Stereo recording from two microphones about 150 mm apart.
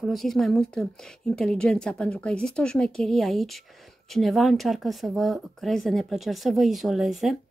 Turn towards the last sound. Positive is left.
turn(degrees=0)  # may be behind; listen again after turning